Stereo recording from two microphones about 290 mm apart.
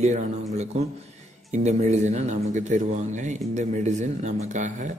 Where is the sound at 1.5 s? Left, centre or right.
Right.